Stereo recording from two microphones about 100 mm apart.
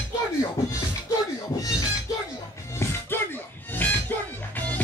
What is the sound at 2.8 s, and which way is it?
Music, 25° left (ahead or behind).